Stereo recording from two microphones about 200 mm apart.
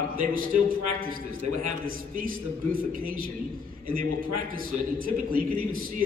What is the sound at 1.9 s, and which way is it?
A man's voice, 45° right (ahead or behind).